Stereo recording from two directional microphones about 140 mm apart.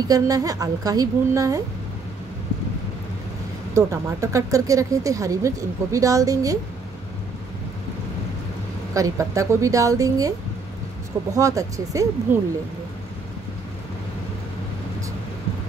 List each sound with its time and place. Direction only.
0.1 s speech: 25° right (ahead or behind)
3.7 s speech: 20° right (ahead or behind)
8.9 s speech: 25° right (ahead or behind)